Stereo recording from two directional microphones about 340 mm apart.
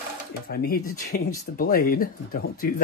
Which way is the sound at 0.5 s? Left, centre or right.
Left.